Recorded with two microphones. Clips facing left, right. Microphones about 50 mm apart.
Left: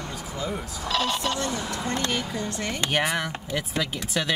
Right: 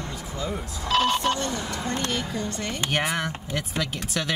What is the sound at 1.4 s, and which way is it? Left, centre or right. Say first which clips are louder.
Speech: even; centre.